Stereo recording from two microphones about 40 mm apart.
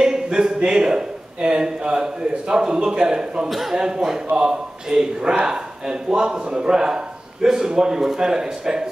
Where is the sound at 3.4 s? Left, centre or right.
Centre.